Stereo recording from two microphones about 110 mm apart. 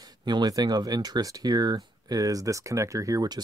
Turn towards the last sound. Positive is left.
turn(degrees=-35)  # may be behind; listen again after turning